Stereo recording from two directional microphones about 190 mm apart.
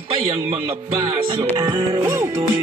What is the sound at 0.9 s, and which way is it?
Music, 25° right (ahead or behind).